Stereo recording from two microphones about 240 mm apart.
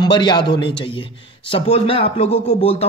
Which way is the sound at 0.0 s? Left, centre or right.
Centre.